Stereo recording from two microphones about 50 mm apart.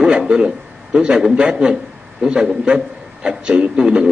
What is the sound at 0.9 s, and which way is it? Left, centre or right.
A man's voice, centre.